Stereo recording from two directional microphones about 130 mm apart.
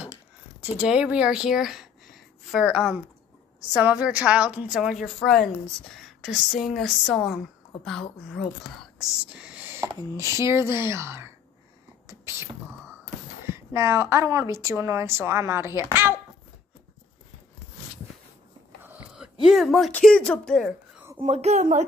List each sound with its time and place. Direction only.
0.7 s a woman's voice: 10° right (ahead or behind)
8.9 s speech: 5° right (ahead or behind)
12.1 s whispering: 20° right (ahead or behind)
13.5 s a woman's voice: 20° right (ahead or behind)
19.1 s a sound: 5° right (ahead or behind)
19.9 s a woman's voice: 5° left (ahead or behind)
21.2 s a woman's voice: 60° right (ahead or behind)